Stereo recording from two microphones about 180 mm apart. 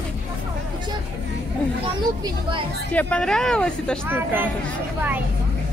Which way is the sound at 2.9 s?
10° left (ahead or behind).